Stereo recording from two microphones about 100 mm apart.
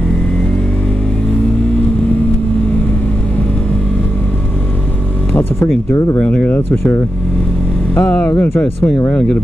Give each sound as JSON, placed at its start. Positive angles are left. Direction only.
{"t": 5.9, "sound": "speech", "side_deg": 35}
{"t": 6.1, "sound": "speech", "side_deg": 10}
{"t": 6.7, "sound": "speech", "side_deg": 25}